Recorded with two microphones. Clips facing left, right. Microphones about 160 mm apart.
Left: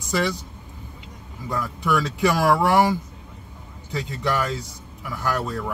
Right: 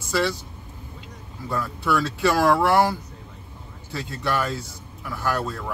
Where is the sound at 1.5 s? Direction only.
15° left (ahead or behind).